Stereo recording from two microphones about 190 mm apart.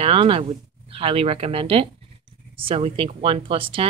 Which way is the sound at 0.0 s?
30° right (ahead or behind).